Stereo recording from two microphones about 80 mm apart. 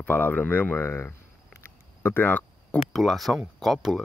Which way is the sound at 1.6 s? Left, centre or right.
Left.